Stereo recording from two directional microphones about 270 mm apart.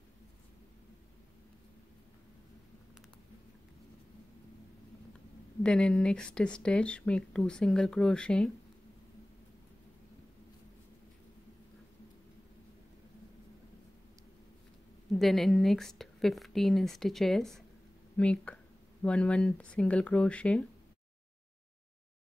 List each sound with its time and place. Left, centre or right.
5.6 s speech: centre
15.1 s speech: centre